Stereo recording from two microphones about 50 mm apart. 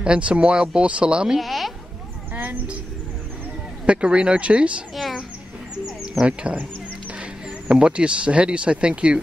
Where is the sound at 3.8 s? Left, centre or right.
Right.